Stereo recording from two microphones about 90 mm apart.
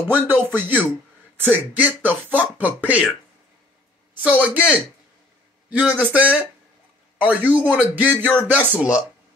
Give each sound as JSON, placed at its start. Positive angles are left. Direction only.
{"t": 0.1, "sound": "a man's voice", "side_deg": -20}
{"t": 4.2, "sound": "a man's voice", "side_deg": -15}